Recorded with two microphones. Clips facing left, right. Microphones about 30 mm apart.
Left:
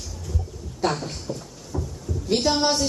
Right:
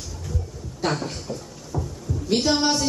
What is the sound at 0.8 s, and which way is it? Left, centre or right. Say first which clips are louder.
Speech: left 1 dB; centre.